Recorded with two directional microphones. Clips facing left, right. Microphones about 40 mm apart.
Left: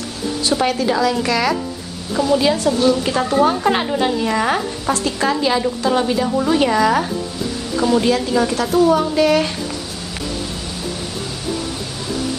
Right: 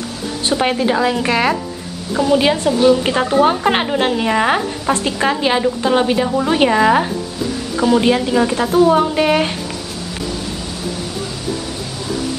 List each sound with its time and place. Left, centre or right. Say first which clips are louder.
0.4 s a woman's voice: right 2 dB; right